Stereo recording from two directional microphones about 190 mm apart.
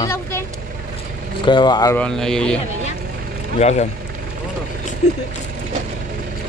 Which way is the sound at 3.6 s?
35° left (ahead or behind).